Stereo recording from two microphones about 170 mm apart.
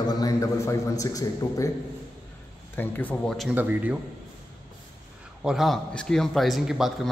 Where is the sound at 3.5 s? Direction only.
10° right (ahead or behind).